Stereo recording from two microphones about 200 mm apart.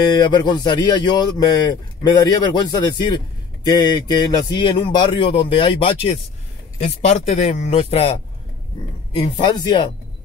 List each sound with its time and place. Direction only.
0.1 s a man's voice: 20° left (ahead or behind)